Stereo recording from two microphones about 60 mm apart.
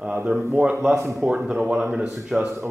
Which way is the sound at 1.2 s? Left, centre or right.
Right.